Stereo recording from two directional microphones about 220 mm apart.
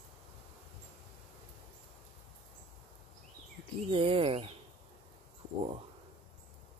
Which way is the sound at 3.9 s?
25° right (ahead or behind).